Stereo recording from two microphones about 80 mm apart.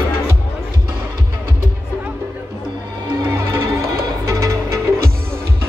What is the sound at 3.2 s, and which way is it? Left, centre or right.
Music, right.